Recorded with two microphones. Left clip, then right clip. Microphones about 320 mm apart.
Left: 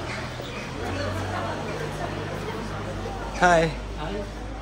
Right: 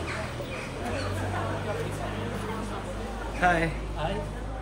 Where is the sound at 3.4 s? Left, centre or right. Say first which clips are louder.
Left 5 dB; centre.